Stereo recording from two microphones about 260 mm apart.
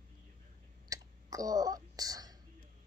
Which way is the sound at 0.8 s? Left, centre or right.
Centre.